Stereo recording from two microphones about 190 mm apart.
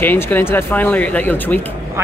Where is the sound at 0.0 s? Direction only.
10° left (ahead or behind).